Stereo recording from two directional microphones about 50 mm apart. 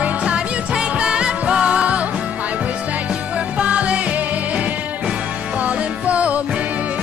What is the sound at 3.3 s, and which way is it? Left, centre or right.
Music, right.